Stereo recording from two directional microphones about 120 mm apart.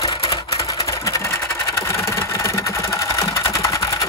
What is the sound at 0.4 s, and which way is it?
Engine, 30° left (ahead or behind).